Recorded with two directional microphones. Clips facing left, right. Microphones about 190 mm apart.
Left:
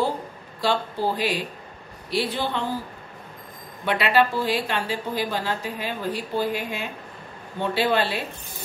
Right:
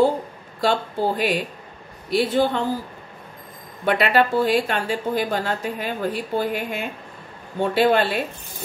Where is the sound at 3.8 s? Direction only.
50° right (ahead or behind).